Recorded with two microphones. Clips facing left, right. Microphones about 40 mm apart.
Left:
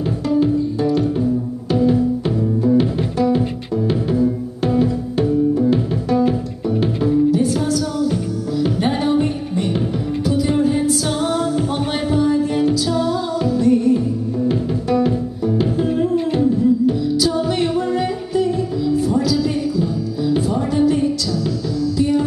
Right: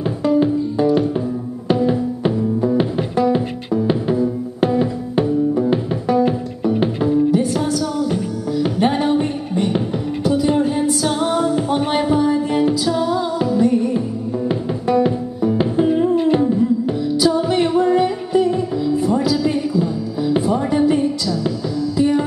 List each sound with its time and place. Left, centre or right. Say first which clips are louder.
0.2 s music: right 1 dB; centre
5.5 s music: left 1 dB; centre
7.3 s music: even; centre